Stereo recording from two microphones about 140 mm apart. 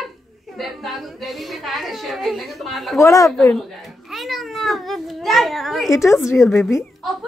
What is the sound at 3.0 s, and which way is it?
Speech, 25° left (ahead or behind).